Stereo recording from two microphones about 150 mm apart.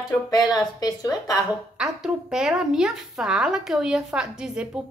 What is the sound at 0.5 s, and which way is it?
Speech, 25° left (ahead or behind).